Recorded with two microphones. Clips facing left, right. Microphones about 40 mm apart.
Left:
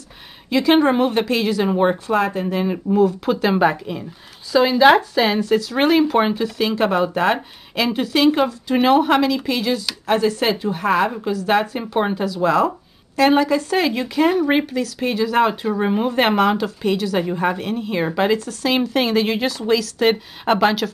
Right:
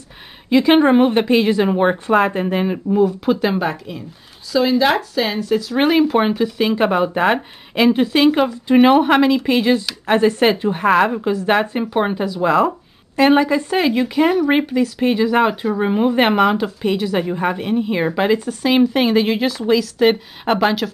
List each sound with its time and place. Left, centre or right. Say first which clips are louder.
0.5 s speech: right 3 dB; centre
2.0 s a woman's voice: right 4 dB; right
2.7 s speech: left 2 dB; centre
3.5 s a woman's voice: left 4 dB; centre; by 11.8 s right
11.8 s speech: right 2 dB; centre
15.6 s speech: right 2 dB; centre